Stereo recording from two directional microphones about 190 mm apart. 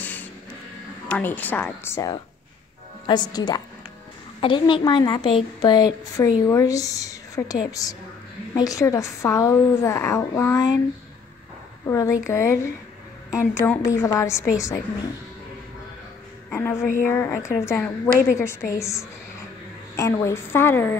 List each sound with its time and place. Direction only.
0.0 s music: 10° left (ahead or behind)
1.0 s a woman's voice: 5° left (ahead or behind)
11.8 s a woman's voice: 15° left (ahead or behind)
16.4 s a woman's voice: 10° left (ahead or behind)